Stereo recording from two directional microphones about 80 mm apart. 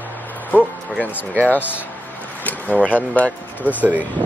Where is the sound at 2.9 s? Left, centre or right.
Centre.